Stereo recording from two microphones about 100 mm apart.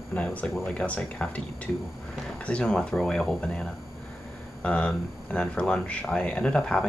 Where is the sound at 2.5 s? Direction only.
10° left (ahead or behind).